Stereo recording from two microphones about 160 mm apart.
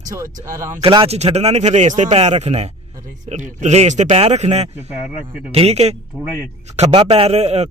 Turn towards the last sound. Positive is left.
turn(degrees=-45)  # may be behind; listen again after turning